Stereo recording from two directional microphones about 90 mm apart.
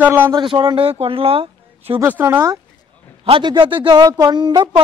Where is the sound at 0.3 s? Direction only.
65° right (ahead or behind); by 2.0 s 90° right.